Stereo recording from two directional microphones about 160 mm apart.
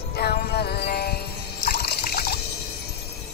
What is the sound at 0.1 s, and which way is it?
Music, 75° left (ahead or behind).